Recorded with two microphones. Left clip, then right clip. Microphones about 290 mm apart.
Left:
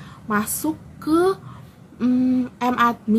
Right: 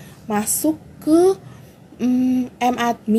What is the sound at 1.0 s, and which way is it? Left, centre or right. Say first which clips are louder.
Speech: right 4 dB; centre.